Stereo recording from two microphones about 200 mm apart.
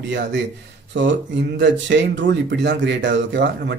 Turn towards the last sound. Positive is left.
turn(degrees=-60)  # may be behind; listen again after turning